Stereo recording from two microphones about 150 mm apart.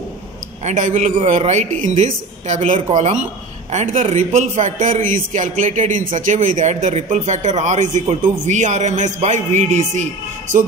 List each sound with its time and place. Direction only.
0.7 s speech: 55° right (ahead or behind)